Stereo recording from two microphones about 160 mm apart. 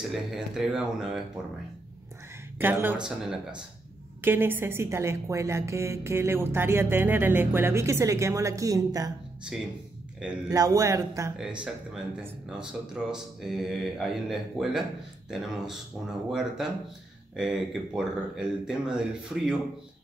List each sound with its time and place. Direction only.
0.0 s speech: 5° right (ahead or behind)
2.6 s a woman's voice: 10° right (ahead or behind)
10.5 s speech: 20° right (ahead or behind)
11.3 s speech: 5° right (ahead or behind)